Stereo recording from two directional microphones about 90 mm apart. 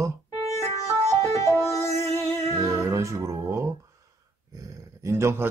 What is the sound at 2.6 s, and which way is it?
Speech, 35° right (ahead or behind).